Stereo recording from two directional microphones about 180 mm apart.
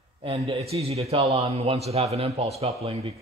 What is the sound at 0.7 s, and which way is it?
A man's voice, 35° right (ahead or behind).